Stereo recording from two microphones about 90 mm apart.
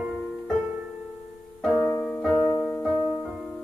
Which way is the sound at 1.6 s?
Centre (ahead or behind).